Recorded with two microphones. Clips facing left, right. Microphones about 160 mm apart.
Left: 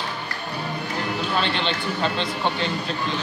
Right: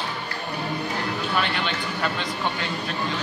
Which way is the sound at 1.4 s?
25° left (ahead or behind).